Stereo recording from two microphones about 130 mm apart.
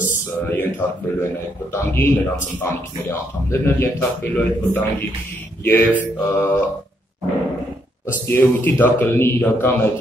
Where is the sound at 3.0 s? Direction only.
20° left (ahead or behind).